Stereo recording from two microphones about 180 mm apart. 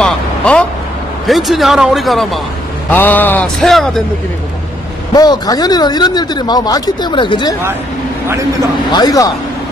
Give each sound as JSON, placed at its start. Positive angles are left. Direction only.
{"t": 0.0, "sound": "vehicle", "side_deg": 5}
{"t": 1.2, "sound": "speech", "side_deg": 0}
{"t": 5.1, "sound": "speech", "side_deg": 20}
{"t": 8.3, "sound": "a man's voice", "side_deg": -15}
{"t": 8.9, "sound": "speech", "side_deg": 20}